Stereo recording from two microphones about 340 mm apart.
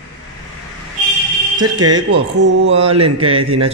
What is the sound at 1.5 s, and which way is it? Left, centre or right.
Mantra, centre.